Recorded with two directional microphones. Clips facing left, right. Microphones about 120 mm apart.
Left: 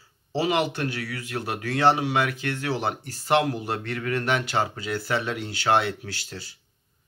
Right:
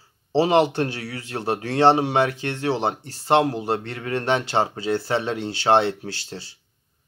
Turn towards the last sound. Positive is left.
turn(degrees=-30)  # may be behind; listen again after turning